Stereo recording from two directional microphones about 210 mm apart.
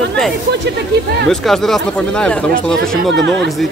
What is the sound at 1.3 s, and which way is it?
Speech, centre (ahead or behind).